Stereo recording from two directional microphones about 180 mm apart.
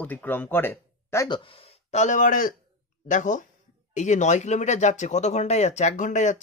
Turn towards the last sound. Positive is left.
turn(degrees=45)  # may be behind; listen again after turning